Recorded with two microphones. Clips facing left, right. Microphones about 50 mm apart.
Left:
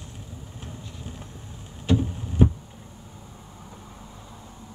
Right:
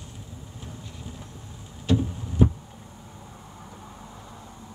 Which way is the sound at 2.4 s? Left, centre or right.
Left.